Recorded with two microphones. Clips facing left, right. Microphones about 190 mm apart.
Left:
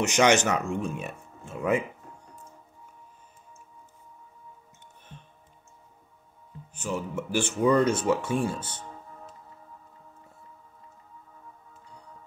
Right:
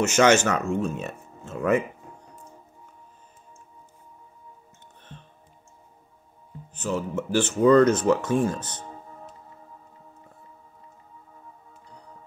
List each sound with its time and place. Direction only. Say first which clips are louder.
0.0 s speech: right 3 dB; 15° left (ahead or behind)
6.7 s speech: right 4 dB; 10° left (ahead or behind)
8.8 s music: right 2 dB; 30° right (ahead or behind)